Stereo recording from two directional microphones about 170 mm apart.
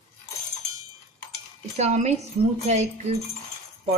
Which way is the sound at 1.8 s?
40° right (ahead or behind).